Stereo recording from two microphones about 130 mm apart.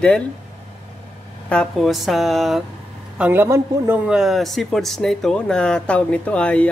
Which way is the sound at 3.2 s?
15° right (ahead or behind).